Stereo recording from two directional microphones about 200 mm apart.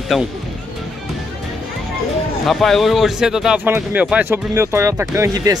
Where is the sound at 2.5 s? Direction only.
Centre (ahead or behind).